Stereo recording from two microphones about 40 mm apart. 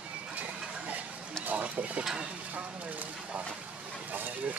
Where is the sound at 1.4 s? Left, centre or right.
Right.